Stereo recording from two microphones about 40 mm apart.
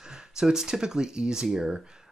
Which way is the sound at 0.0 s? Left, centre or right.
Centre.